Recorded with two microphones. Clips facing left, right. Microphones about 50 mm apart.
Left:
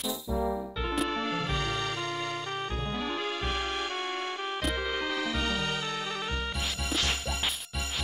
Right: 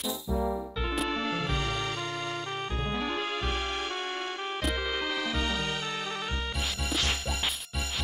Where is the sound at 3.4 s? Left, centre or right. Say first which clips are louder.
Even; centre.